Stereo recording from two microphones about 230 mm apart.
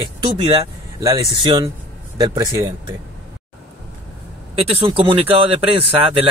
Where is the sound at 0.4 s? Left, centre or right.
Right.